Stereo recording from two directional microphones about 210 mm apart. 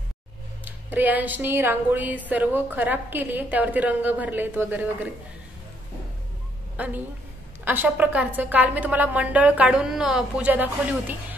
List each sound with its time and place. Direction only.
0.7 s speech: 10° right (ahead or behind)
6.8 s speech: 5° right (ahead or behind)